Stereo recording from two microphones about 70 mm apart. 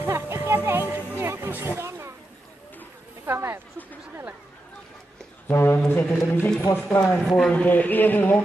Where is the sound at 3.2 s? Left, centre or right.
Right.